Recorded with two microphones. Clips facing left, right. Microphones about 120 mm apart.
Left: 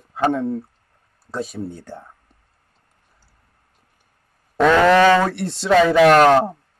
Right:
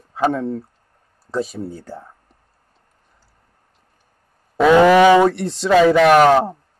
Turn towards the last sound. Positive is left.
turn(degrees=-5)  # may be behind; listen again after turning